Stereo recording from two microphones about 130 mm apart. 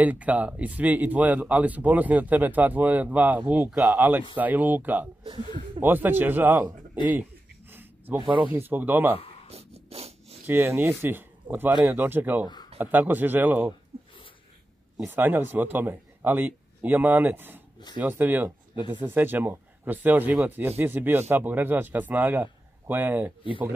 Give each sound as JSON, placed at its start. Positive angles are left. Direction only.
{"t": 0.0, "sound": "speech", "side_deg": -10}
{"t": 3.7, "sound": "speech", "side_deg": 0}
{"t": 4.4, "sound": "speech", "side_deg": -15}
{"t": 7.7, "sound": "a sound", "side_deg": -15}
{"t": 8.2, "sound": "speech", "side_deg": -40}
{"t": 8.5, "sound": "speech", "side_deg": -15}
{"t": 9.2, "sound": "a sound", "side_deg": 45}
{"t": 9.5, "sound": "dog", "side_deg": -50}
{"t": 10.4, "sound": "speech", "side_deg": -20}
{"t": 15.0, "sound": "speech", "side_deg": -15}